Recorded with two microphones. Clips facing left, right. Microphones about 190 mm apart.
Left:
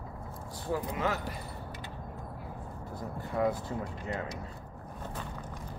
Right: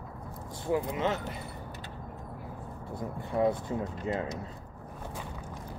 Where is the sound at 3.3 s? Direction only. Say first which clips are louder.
Right 3 dB; 20° right (ahead or behind).